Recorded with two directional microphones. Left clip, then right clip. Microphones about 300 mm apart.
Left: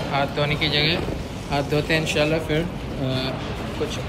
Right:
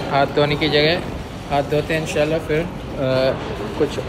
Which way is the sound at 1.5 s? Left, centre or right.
Centre.